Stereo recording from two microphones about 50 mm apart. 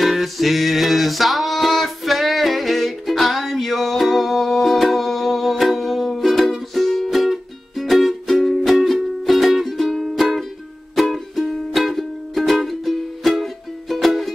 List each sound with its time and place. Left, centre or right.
0.0 s music: centre